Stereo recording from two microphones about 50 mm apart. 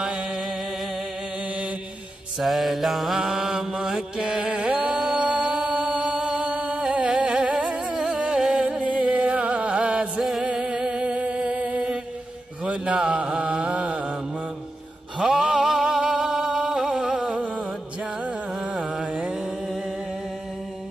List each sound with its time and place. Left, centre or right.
2.4 s mantra: centre
4.8 s music: centre
8.8 s music: right
10.8 s music: centre
12.6 s mantra: right
15.1 s a sound: centre
18.6 s music: centre